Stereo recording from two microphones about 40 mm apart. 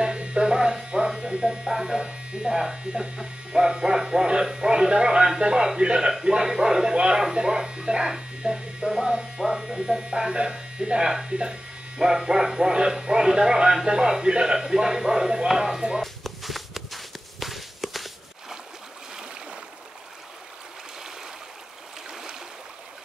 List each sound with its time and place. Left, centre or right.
0.0 s electric shaver: right
2.8 s a man's voice: centre
16.0 s walk: centre